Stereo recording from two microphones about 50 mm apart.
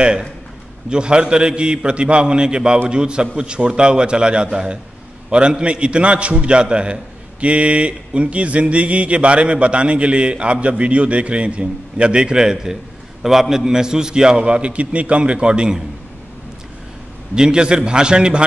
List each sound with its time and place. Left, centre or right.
0.8 s a man's voice: centre
17.4 s a man's voice: centre